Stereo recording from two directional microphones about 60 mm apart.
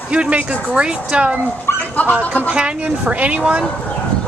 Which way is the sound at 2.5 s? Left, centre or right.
Centre.